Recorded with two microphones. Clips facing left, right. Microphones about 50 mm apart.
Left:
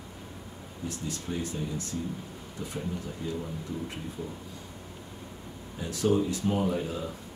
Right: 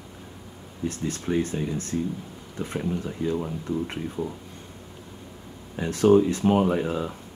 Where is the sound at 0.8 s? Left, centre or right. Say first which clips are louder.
Right 7 dB; right.